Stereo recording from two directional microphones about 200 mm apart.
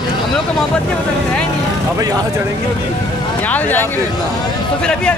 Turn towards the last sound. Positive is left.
turn(degrees=10)  # may be behind; listen again after turning